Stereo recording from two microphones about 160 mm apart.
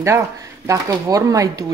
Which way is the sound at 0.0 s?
20° right (ahead or behind).